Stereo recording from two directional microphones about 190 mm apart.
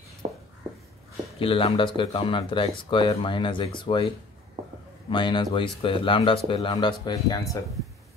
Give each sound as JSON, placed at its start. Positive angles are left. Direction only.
{"t": 1.4, "sound": "speech", "side_deg": 30}
{"t": 5.1, "sound": "speech", "side_deg": 25}